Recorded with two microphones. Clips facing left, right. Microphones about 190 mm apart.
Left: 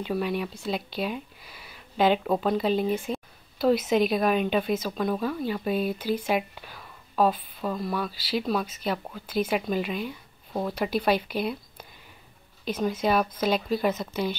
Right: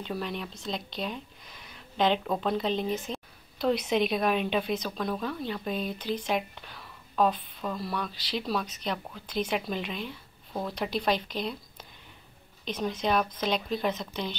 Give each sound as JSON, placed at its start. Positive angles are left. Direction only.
{"t": 0.0, "sound": "a woman's voice", "side_deg": 5}
{"t": 12.6, "sound": "speech", "side_deg": 5}